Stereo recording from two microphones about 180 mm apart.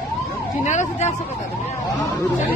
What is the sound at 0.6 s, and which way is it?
Vehicle, 40° left (ahead or behind).